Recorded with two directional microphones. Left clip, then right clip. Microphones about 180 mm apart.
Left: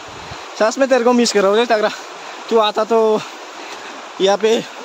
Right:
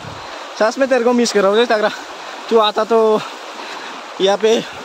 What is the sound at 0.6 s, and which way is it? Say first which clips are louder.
Speech: even; 10° left (ahead or behind).